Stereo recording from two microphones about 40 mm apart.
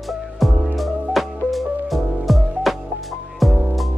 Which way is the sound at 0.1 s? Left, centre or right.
Centre.